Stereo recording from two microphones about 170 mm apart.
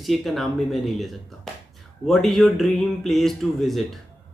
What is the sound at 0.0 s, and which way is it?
A man's voice, centre (ahead or behind).